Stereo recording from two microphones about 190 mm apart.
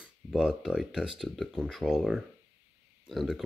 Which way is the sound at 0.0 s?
5° right (ahead or behind).